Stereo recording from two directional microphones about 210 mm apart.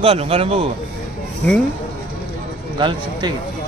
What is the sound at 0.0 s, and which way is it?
Speech, 30° right (ahead or behind).